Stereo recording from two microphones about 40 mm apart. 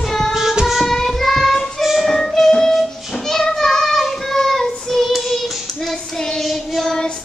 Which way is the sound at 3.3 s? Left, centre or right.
Centre.